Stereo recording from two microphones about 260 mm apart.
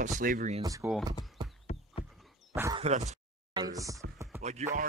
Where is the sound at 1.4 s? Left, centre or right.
Centre.